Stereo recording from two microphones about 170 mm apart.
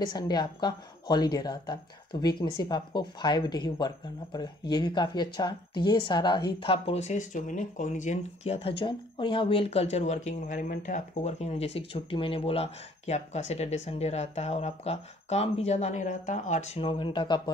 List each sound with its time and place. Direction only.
0.0 s speech: 25° left (ahead or behind)